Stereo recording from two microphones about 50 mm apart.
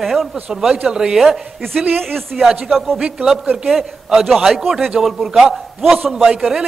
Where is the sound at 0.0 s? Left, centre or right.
Centre.